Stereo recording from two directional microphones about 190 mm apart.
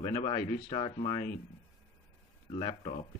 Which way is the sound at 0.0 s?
25° left (ahead or behind).